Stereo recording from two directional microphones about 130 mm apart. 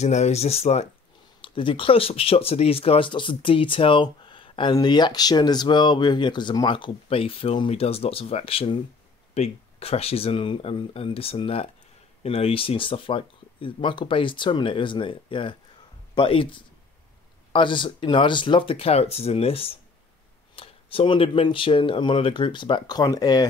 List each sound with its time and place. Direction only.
0.0 s speech: 60° left (ahead or behind)
1.4 s speech: 40° left (ahead or behind)